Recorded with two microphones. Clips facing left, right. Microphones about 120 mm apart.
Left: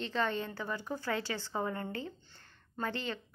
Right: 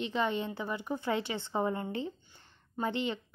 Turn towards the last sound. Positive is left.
turn(degrees=-20)  # may be behind; listen again after turning